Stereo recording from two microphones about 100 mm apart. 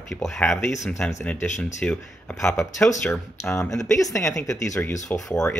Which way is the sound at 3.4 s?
25° left (ahead or behind).